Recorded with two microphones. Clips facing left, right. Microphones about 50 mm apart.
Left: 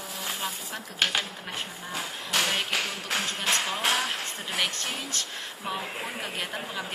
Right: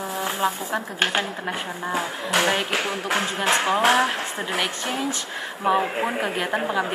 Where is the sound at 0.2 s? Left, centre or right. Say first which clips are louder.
Right 9 dB; right.